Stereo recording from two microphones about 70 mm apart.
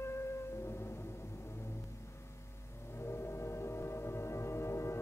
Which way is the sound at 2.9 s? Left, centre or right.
Left.